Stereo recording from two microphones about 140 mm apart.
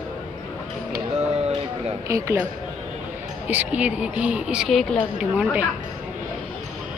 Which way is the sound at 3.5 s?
10° right (ahead or behind).